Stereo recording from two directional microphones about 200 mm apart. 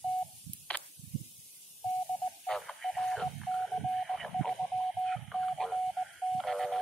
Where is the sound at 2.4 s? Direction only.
Centre (ahead or behind).